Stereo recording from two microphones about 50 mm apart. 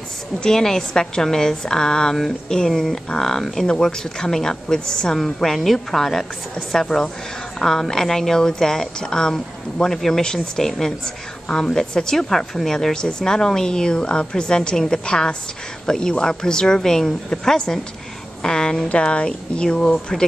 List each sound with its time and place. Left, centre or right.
0.4 s a woman's voice: centre